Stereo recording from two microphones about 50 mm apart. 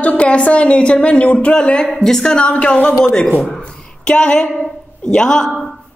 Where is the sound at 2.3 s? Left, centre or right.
Left.